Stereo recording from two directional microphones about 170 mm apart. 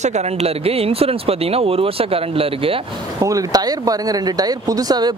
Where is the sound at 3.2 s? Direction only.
20° right (ahead or behind).